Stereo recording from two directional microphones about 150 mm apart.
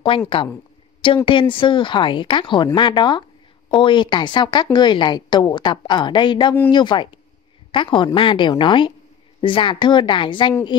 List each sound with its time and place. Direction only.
0.1 s speech: 35° left (ahead or behind)